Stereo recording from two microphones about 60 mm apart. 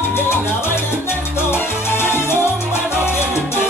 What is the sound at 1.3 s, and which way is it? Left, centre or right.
Salsa music, left.